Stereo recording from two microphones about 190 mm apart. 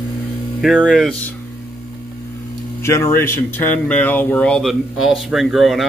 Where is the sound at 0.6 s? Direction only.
Centre (ahead or behind).